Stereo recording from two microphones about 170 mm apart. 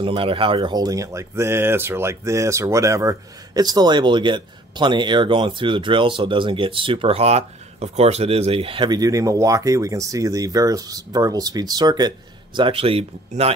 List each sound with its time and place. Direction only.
0.0 s speech: 30° right (ahead or behind)